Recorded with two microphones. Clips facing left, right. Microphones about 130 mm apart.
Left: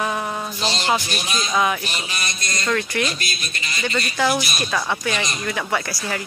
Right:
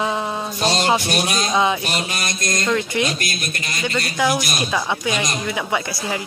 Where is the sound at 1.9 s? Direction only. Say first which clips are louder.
Right 5 dB; 50° right (ahead or behind).